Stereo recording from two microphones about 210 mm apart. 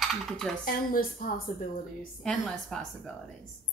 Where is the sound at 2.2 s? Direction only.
Centre (ahead or behind).